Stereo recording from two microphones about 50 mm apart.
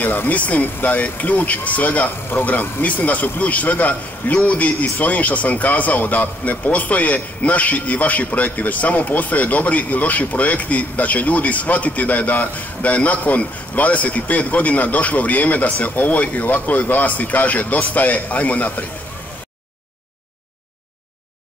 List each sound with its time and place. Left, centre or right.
0.0 s a man's voice: left